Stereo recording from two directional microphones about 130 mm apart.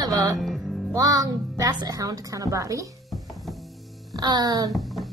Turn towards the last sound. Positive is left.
turn(degrees=0)  # may be behind; listen again after turning